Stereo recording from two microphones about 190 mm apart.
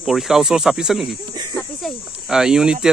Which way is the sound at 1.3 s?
20° right (ahead or behind).